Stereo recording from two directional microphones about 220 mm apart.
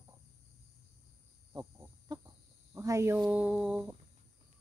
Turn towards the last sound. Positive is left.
turn(degrees=-5)  # may be behind; listen again after turning